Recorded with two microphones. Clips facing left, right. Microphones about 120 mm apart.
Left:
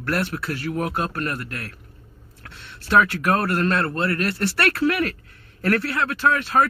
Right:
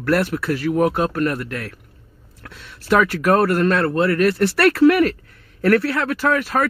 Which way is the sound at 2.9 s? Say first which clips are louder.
Right 2 dB; 50° right (ahead or behind).